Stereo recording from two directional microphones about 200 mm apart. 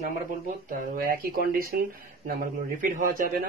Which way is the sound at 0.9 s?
50° right (ahead or behind).